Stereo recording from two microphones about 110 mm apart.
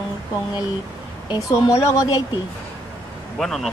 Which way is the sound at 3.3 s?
Centre (ahead or behind).